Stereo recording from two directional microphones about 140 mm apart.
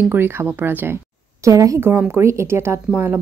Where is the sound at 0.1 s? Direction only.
15° right (ahead or behind).